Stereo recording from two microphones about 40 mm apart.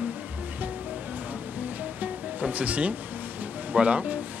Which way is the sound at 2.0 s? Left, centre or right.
Right.